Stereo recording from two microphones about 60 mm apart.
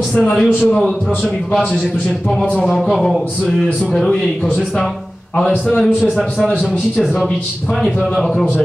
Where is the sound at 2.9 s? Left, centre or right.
Centre.